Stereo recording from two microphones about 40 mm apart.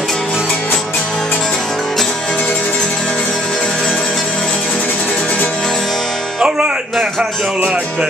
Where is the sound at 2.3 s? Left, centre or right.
Left.